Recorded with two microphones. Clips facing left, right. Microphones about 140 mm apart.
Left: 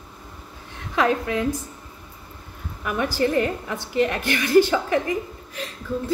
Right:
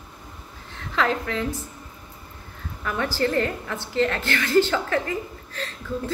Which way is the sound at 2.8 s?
15° left (ahead or behind).